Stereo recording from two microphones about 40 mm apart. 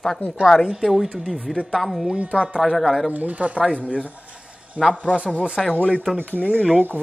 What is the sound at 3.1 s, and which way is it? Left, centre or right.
Speech, right.